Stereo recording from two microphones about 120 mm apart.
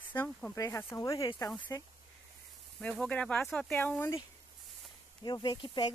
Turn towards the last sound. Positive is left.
turn(degrees=40)  # may be behind; listen again after turning